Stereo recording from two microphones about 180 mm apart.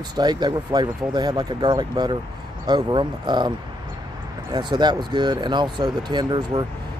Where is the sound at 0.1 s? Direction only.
25° right (ahead or behind).